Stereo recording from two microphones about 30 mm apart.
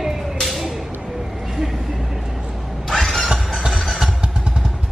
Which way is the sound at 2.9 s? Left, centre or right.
Centre.